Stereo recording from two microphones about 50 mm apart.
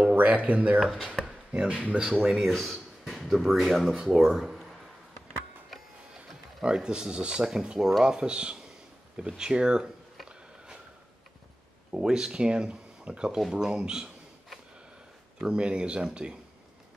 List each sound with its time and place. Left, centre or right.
0.1 s speech: right
1.2 s chopping: centre
1.8 s speech: right
2.2 s speech: centre
6.6 s speech: centre
11.9 s speech: centre
15.4 s speech: centre